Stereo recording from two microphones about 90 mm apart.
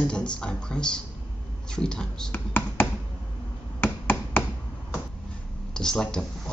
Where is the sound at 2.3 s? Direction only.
20° left (ahead or behind).